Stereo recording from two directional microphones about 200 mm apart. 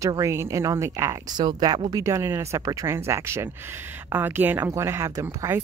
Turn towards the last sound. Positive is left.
turn(degrees=-15)  # may be behind; listen again after turning